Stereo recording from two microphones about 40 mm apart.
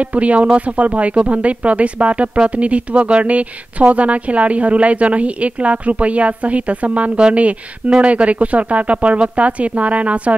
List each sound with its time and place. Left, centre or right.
0.0 s speech: right